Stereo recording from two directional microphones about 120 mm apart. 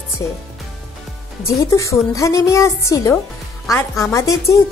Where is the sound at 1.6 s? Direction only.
25° left (ahead or behind).